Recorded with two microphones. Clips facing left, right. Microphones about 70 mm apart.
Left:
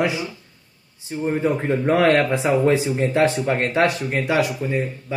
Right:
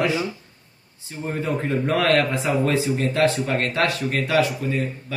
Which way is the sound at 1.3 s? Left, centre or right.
Left.